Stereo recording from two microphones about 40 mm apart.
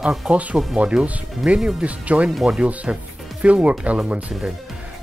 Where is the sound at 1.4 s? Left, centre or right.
Centre.